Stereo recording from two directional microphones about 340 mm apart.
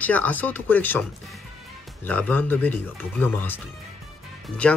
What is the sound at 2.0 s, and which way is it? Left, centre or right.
Speech, centre.